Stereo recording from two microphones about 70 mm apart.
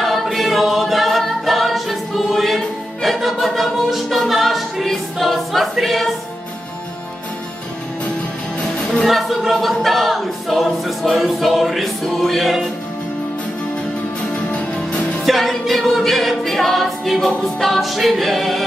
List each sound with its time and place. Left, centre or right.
0.0 s a capella: centre
9.0 s choir: centre
15.2 s music: centre